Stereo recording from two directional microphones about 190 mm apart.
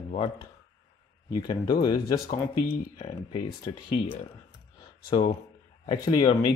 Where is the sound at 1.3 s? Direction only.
25° left (ahead or behind).